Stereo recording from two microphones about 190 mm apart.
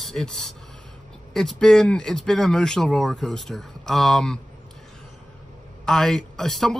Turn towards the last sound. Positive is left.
turn(degrees=0)  # may be behind; listen again after turning